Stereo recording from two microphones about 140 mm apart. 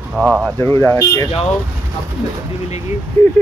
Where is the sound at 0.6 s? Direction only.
20° left (ahead or behind).